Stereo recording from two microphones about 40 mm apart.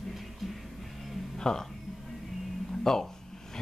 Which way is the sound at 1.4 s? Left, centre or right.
Centre.